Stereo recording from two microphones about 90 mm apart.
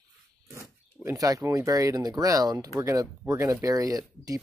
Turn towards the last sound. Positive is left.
turn(degrees=-40)  # may be behind; listen again after turning